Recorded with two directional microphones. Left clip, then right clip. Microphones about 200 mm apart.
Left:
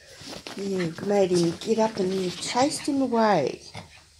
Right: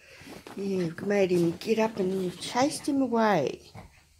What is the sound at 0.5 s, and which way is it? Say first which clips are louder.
Speech: left 2 dB; 5° right (ahead or behind).